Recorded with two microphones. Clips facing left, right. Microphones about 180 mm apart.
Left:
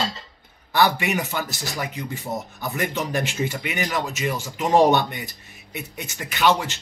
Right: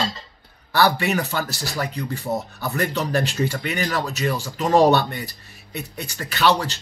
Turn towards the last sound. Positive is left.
turn(degrees=20)  # may be behind; listen again after turning